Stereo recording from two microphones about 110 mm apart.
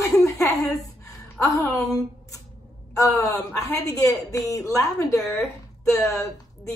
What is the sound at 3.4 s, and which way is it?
A woman's voice, 30° left (ahead or behind).